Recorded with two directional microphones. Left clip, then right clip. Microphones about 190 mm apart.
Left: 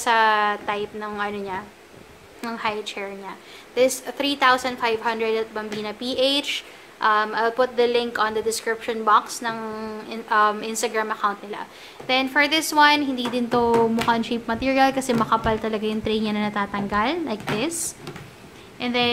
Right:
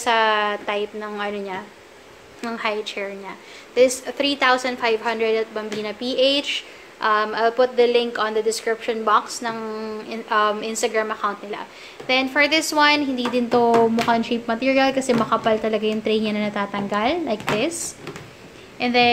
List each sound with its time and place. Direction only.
0.0 s a woman's voice: 5° right (ahead or behind)